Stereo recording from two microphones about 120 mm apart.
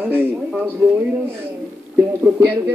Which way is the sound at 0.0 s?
15° right (ahead or behind).